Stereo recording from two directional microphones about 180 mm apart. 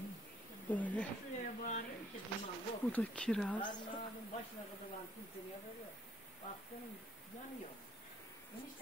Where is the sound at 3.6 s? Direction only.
25° left (ahead or behind).